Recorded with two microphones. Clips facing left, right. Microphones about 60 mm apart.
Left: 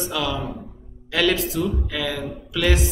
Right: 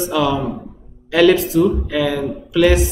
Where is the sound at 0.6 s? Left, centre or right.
Centre.